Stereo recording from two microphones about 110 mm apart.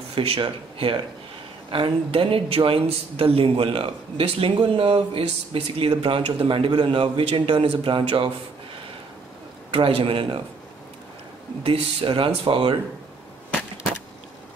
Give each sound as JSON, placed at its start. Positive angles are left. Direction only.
{"t": 0.1, "sound": "speech", "side_deg": -55}
{"t": 9.7, "sound": "speech", "side_deg": -60}
{"t": 11.6, "sound": "speech", "side_deg": -55}